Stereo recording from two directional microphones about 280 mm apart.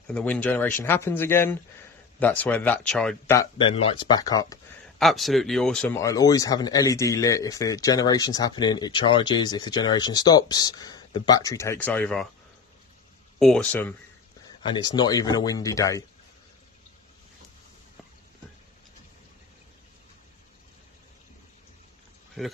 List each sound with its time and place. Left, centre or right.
0.0 s speech: centre
4.9 s speech: centre
13.4 s speech: centre